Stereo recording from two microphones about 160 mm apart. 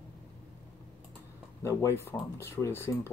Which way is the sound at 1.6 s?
15° left (ahead or behind).